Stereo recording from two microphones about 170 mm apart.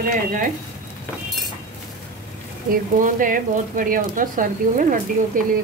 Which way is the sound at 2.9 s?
50° right (ahead or behind).